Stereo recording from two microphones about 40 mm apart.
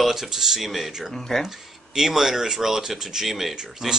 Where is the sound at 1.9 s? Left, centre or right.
Centre.